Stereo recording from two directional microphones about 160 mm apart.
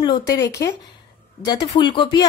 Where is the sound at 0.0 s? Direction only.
25° left (ahead or behind).